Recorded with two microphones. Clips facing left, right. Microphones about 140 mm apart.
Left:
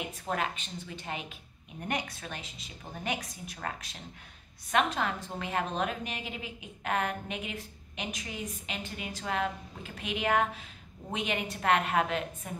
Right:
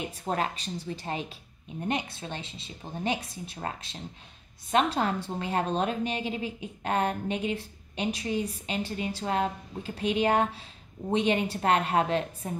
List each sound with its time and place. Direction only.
0.2 s a woman's voice: 35° right (ahead or behind)